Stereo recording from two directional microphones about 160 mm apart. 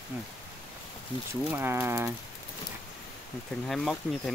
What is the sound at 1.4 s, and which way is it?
Speech, 15° right (ahead or behind).